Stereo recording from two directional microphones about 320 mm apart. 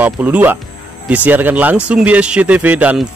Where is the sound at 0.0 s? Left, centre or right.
Centre.